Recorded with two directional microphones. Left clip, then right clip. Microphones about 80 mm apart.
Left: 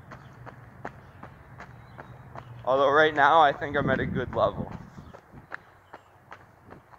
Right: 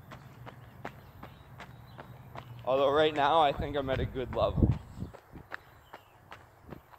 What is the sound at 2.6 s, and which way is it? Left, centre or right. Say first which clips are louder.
Speech: left 5 dB; right.